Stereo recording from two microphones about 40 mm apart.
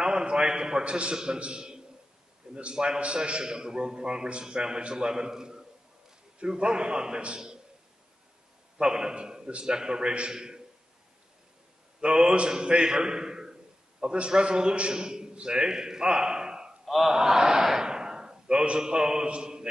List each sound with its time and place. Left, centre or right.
0.0 s a man's voice: right
8.7 s a man's voice: centre
12.0 s a man's voice: right
16.8 s a sound: centre
17.1 s a man's voice: centre